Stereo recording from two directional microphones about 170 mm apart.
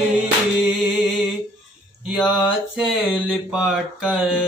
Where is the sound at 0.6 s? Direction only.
5° right (ahead or behind).